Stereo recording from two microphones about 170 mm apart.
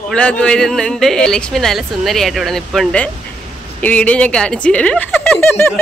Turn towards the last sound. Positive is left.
turn(degrees=10)  # may be behind; listen again after turning